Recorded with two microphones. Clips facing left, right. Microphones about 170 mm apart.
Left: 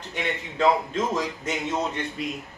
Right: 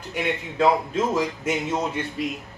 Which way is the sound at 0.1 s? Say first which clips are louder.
Right 3 dB; 10° right (ahead or behind).